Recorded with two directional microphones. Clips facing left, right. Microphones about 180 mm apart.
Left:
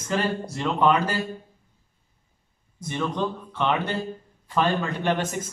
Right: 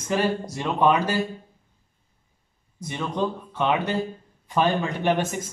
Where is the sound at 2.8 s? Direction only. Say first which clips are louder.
Even; 15° right (ahead or behind).